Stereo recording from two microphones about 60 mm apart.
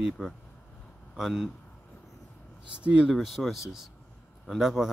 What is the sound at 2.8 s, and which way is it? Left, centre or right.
Speech, right.